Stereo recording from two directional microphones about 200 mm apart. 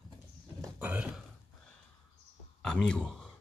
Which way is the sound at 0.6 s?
10° right (ahead or behind).